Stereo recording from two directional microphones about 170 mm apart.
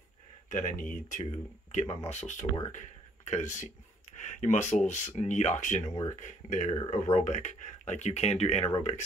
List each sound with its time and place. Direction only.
0.5 s speech: 45° left (ahead or behind)